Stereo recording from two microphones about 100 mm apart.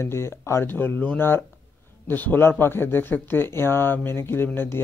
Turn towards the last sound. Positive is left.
turn(degrees=20)  # may be behind; listen again after turning